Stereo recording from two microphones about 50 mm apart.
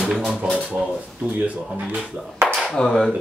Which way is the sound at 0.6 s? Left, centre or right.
Centre.